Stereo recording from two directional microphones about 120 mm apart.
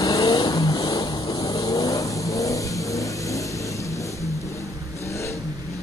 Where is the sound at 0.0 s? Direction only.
35° left (ahead or behind).